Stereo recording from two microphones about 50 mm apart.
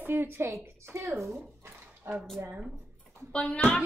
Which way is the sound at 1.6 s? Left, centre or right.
Right.